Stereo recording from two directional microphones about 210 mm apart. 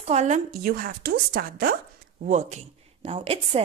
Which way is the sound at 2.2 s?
35° right (ahead or behind).